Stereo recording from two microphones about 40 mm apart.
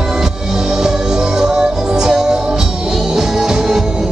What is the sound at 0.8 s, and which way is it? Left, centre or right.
Music, centre.